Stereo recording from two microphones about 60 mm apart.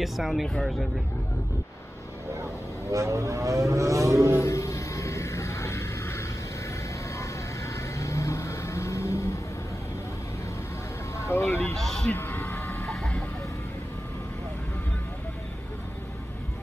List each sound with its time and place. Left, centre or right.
0.0 s speech: centre
2.9 s speech: right
4.4 s a sound: left
7.1 s vehicle: left
11.1 s speech: left
11.7 s a man's voice: centre
12.1 s vehicle: left